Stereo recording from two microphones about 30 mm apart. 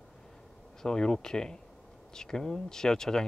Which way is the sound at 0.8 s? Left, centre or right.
Left.